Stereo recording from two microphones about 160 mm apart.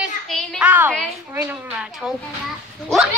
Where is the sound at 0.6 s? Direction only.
10° right (ahead or behind).